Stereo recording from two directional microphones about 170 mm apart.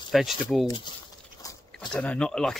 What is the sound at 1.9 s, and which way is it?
Speech, 5° left (ahead or behind).